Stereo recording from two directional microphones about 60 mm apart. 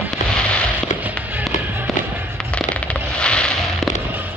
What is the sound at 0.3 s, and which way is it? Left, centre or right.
Fireworks, centre.